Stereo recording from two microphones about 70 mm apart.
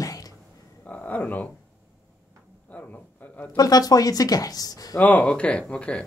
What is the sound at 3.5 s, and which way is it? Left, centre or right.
Speech, left.